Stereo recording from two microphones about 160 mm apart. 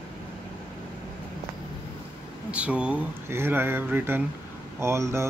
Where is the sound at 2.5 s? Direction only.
5° right (ahead or behind).